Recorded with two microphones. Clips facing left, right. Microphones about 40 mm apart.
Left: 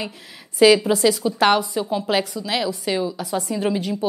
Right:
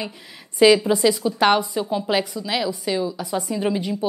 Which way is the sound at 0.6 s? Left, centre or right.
Centre.